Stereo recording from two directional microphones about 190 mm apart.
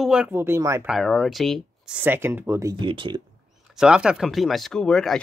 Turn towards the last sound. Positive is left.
turn(degrees=5)  # may be behind; listen again after turning